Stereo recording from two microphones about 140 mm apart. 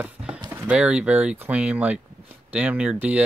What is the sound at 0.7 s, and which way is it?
Speech, 10° right (ahead or behind).